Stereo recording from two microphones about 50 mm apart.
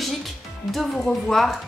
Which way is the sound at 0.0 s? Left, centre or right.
Centre.